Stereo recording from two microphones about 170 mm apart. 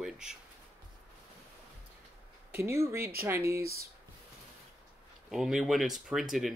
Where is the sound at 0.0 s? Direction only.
5° right (ahead or behind).